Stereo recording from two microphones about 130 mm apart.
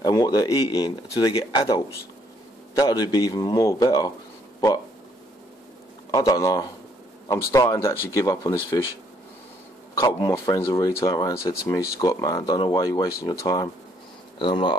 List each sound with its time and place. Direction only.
0.0 s speech: 30° left (ahead or behind)
6.1 s speech: 30° left (ahead or behind)
7.8 s speech: 25° left (ahead or behind)
9.9 s speech: 25° left (ahead or behind)